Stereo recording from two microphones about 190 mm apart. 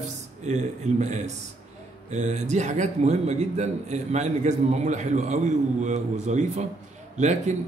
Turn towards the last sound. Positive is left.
turn(degrees=-40)  # may be behind; listen again after turning